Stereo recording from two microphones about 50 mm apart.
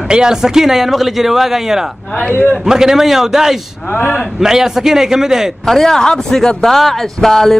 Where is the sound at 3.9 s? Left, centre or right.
Left.